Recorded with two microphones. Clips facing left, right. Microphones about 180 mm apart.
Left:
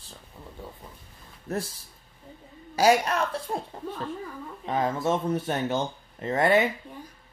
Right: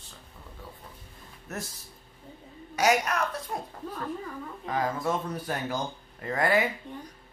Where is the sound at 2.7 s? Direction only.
30° left (ahead or behind).